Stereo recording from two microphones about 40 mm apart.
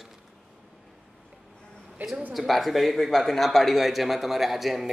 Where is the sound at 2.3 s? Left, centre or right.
Centre.